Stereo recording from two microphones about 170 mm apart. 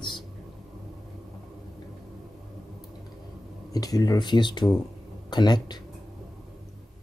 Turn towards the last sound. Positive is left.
turn(degrees=25)  # may be behind; listen again after turning